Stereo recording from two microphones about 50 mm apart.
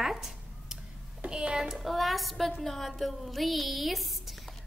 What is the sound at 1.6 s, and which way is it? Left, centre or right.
A woman's voice, centre.